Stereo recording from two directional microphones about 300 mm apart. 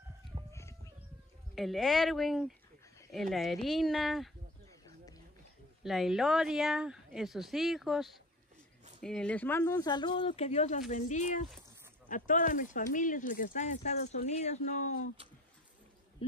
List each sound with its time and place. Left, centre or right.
0.5 s chicken: centre
1.5 s a woman's voice: centre
4.8 s a sound: centre
5.9 s a woman's voice: centre; by 15.0 s left
16.2 s speech: centre